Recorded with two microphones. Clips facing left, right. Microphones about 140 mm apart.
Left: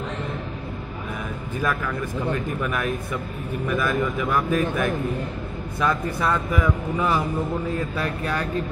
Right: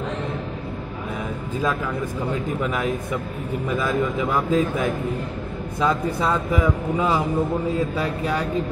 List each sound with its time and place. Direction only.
2.3 s speech: 20° right (ahead or behind)